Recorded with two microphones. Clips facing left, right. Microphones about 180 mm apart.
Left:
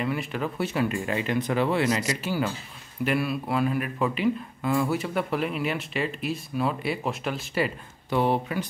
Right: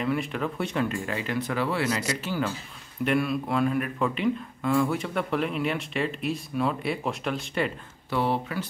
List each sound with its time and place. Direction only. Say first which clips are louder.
0.0 s speech: right 1 dB; centre (ahead or behind)
3.0 s speech: right 1 dB; 5° left (ahead or behind)
8.1 s speech: left 2 dB; 15° left (ahead or behind)